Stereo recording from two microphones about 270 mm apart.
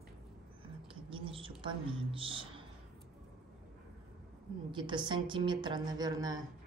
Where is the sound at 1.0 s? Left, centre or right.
Centre.